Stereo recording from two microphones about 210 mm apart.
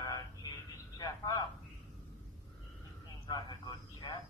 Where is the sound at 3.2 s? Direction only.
20° left (ahead or behind).